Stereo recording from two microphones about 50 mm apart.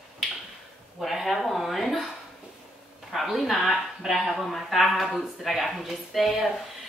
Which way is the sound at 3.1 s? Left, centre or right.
Centre.